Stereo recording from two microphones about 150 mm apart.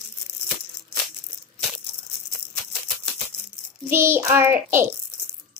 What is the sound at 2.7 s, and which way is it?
Maraca, centre (ahead or behind).